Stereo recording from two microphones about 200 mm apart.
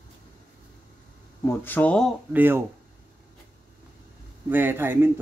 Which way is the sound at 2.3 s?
10° right (ahead or behind).